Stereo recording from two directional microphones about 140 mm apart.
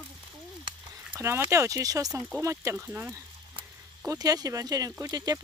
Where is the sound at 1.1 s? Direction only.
15° right (ahead or behind).